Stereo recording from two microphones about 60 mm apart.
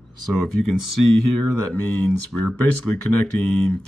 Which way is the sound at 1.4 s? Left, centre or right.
Centre.